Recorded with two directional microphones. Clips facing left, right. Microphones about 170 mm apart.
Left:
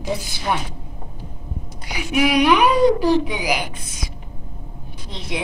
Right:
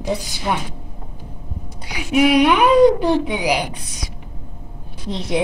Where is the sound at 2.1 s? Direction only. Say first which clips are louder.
Right 2 dB; 25° right (ahead or behind).